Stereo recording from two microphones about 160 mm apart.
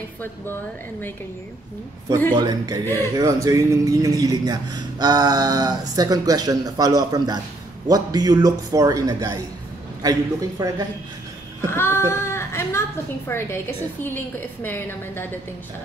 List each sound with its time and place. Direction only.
2.3 s speech: 25° right (ahead or behind)
11.7 s child singing: 15° left (ahead or behind)
13.3 s a woman's voice: 15° left (ahead or behind)